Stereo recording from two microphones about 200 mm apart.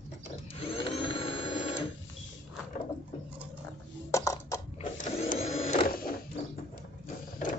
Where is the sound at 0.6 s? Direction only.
25° left (ahead or behind).